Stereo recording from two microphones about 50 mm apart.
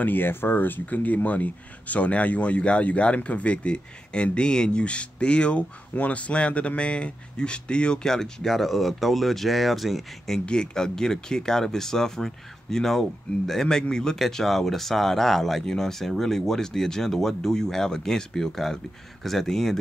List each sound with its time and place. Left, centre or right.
0.0 s speech: left; by 10.0 s centre
10.4 s speech: centre